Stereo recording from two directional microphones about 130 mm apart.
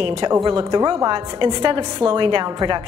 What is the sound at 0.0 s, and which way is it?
A woman's voice, 40° right (ahead or behind).